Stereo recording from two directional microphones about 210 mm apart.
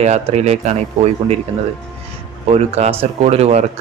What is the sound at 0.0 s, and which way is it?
Speech, 30° right (ahead or behind).